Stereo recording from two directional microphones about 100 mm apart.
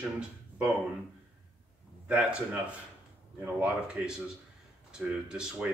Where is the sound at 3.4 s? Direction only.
20° right (ahead or behind).